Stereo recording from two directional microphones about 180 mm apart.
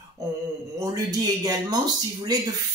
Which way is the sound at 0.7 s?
20° right (ahead or behind).